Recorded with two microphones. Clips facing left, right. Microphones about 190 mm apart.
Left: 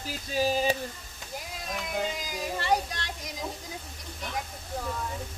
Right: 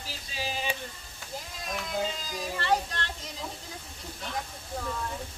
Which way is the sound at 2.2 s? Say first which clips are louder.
Left 1 dB; 10° left (ahead or behind).